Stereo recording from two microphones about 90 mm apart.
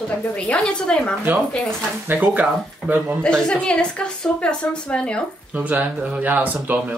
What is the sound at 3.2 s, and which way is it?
A woman's voice, 10° left (ahead or behind).